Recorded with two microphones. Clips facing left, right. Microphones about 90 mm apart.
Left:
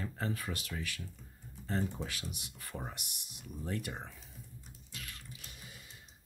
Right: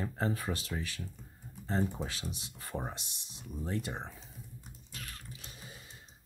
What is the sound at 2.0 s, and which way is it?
Speech, 30° right (ahead or behind).